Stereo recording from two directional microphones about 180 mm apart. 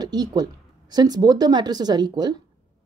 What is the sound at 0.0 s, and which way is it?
Speech, 20° right (ahead or behind).